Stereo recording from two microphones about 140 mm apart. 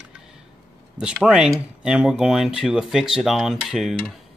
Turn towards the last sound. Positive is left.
turn(degrees=0)  # may be behind; listen again after turning